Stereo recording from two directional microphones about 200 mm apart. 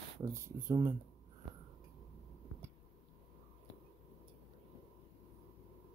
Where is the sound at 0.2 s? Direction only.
15° right (ahead or behind).